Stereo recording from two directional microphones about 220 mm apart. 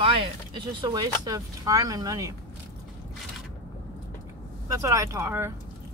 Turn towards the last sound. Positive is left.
turn(degrees=-10)  # may be behind; listen again after turning